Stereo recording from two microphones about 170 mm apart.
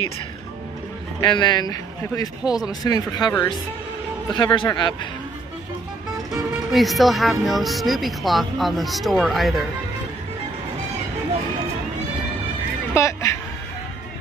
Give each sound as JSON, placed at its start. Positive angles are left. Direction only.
{"t": 1.2, "sound": "a man's voice", "side_deg": 25}
{"t": 4.4, "sound": "a man's voice", "side_deg": 25}
{"t": 6.7, "sound": "speech", "side_deg": 0}
{"t": 12.9, "sound": "speech", "side_deg": 15}